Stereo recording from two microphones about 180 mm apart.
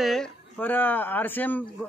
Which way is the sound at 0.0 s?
Centre (ahead or behind).